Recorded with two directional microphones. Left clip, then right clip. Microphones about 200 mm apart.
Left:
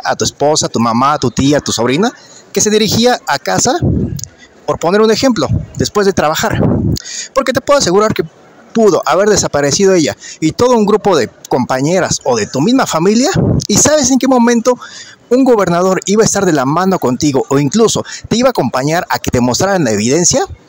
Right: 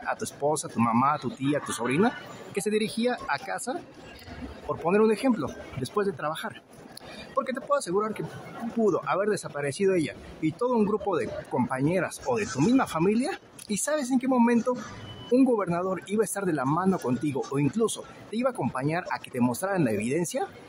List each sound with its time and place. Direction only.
0.0 s speech: 40° left (ahead or behind)
4.6 s speech: 40° left (ahead or behind)